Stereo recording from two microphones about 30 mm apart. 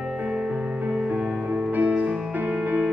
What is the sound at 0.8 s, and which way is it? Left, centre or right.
Music, right.